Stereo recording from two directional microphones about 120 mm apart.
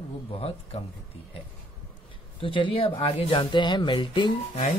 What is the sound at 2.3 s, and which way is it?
Speech, 45° left (ahead or behind).